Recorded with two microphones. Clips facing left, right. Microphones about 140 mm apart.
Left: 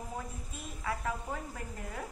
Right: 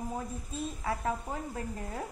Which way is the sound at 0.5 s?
30° right (ahead or behind).